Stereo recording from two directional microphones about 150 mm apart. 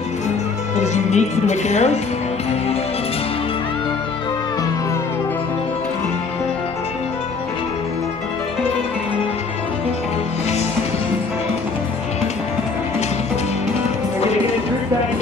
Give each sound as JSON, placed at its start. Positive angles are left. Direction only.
{"t": 0.7, "sound": "speech", "side_deg": 50}